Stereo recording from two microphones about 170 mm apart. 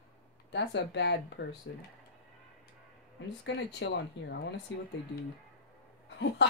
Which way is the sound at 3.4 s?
90° left.